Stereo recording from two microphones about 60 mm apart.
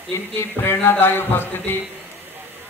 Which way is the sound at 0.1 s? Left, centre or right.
Left.